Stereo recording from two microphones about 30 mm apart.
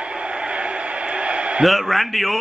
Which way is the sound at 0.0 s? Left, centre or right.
Right.